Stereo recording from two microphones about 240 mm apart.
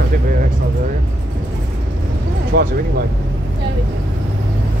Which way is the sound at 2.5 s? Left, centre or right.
Right.